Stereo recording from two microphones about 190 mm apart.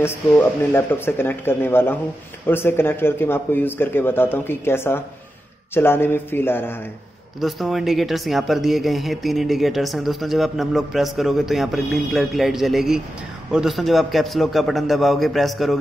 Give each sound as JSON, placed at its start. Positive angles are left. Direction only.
{"t": 0.0, "sound": "speech", "side_deg": 10}
{"t": 7.3, "sound": "speech", "side_deg": 0}